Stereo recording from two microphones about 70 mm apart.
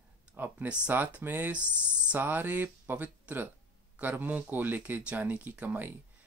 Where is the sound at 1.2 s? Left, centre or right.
Right.